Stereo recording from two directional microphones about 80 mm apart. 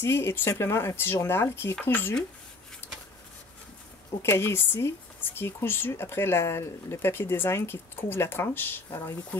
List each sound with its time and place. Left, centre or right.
0.0 s speech: left
4.2 s speech: left